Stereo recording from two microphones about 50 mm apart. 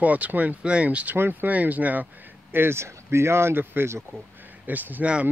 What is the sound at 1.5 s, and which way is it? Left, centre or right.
Speech, right.